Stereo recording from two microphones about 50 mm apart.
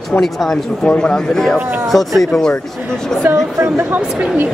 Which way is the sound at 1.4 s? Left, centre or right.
Centre.